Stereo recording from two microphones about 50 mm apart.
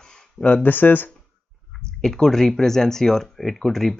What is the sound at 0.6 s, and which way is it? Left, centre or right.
Speech, left.